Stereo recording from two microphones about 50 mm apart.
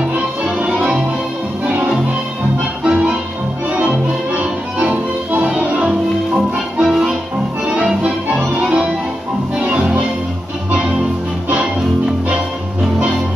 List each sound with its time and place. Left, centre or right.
0.1 s music: right
2.8 s music: centre
5.6 s music: right
8.5 s music: right